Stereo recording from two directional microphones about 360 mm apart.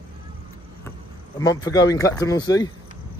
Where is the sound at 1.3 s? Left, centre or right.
Centre.